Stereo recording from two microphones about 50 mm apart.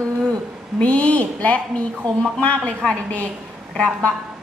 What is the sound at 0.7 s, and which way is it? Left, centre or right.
A woman's voice, left.